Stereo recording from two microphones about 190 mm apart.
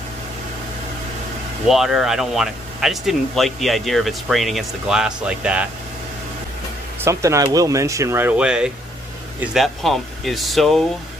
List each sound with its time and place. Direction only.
1.7 s speech: centre (ahead or behind)
7.1 s speech: 15° right (ahead or behind); by 10.8 s centre (ahead or behind)